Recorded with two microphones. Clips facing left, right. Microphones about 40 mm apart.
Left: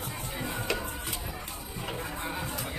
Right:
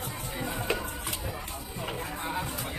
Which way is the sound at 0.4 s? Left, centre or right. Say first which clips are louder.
Right 1 dB; centre.